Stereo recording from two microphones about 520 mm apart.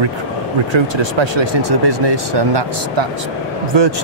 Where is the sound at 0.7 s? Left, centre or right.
Right.